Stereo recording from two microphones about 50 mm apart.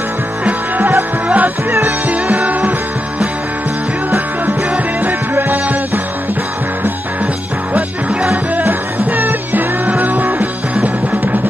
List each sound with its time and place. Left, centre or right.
0.5 s music: right
5.0 s music: right
7.7 s music: right